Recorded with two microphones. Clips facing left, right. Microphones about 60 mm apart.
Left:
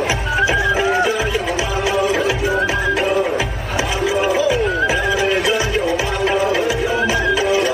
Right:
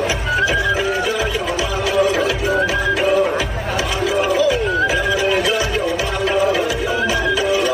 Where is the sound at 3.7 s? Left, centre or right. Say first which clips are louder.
Left 1 dB; centre.